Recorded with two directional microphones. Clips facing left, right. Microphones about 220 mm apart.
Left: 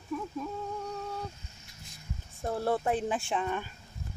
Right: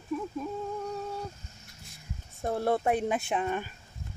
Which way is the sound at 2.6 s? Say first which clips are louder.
Right 2 dB; 15° right (ahead or behind).